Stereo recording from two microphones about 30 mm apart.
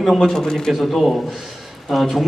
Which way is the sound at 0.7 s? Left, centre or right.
Centre.